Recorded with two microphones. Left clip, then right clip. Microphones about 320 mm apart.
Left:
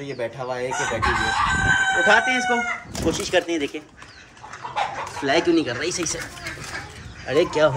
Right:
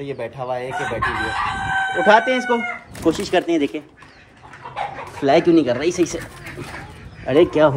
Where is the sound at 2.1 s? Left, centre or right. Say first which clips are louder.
Right 6 dB; centre.